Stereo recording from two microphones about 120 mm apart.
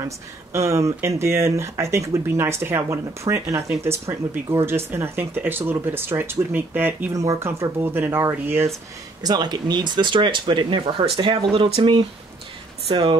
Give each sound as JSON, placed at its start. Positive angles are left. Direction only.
{"t": 0.0, "sound": "speech", "side_deg": -25}
{"t": 7.1, "sound": "speech", "side_deg": -25}
{"t": 9.2, "sound": "speech", "side_deg": -35}